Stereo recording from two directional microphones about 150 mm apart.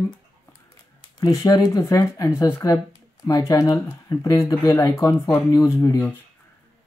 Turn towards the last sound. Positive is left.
turn(degrees=20)  # may be behind; listen again after turning